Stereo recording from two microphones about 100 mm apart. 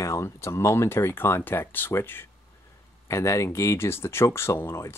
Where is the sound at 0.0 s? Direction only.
30° left (ahead or behind).